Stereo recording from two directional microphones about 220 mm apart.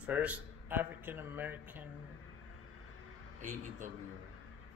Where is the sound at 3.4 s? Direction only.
35° right (ahead or behind).